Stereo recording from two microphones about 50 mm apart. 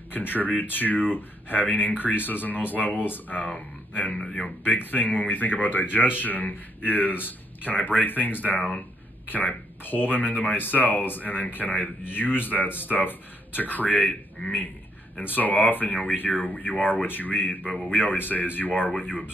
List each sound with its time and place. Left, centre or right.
0.1 s speech: left